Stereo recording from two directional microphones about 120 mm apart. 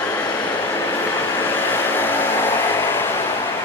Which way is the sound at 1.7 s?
15° left (ahead or behind).